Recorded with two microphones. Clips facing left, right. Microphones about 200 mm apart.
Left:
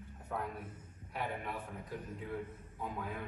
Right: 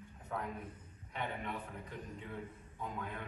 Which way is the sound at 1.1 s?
5° left (ahead or behind).